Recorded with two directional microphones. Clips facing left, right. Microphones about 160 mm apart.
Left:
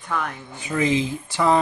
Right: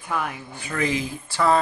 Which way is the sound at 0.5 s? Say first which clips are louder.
Left 4 dB; 20° left (ahead or behind).